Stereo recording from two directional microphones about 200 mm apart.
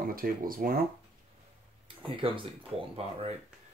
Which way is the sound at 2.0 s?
25° right (ahead or behind).